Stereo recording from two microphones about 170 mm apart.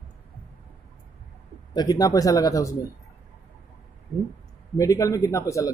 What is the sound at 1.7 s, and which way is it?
Speech, 25° left (ahead or behind).